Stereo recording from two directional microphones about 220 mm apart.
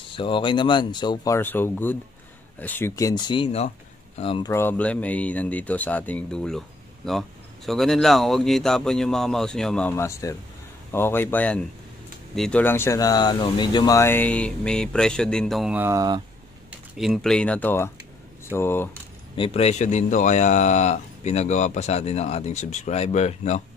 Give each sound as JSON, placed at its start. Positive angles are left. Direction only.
{"t": 0.1, "sound": "speech", "side_deg": 20}
{"t": 4.5, "sound": "speech", "side_deg": 10}
{"t": 16.9, "sound": "speech", "side_deg": 0}
{"t": 19.3, "sound": "a man's voice", "side_deg": 25}